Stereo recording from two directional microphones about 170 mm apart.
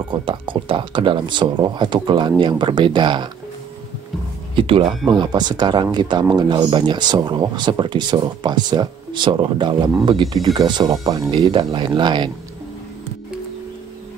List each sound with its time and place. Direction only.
0.1 s speech: 30° right (ahead or behind)
4.6 s speech: 30° right (ahead or behind)